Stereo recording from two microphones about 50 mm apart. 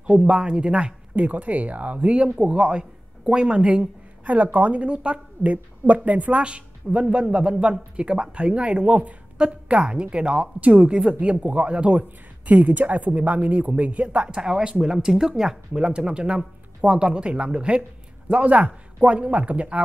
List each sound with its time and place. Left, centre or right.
0.2 s speech: centre
2.2 s speech: centre